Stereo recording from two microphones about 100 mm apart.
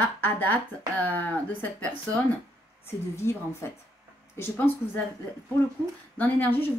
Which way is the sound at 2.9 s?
25° left (ahead or behind).